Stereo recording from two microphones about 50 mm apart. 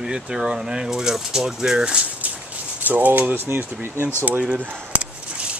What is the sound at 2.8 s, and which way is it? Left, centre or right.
Speech, right.